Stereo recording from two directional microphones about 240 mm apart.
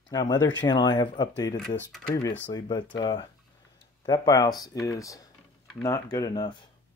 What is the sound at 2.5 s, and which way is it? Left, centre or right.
Speech, centre.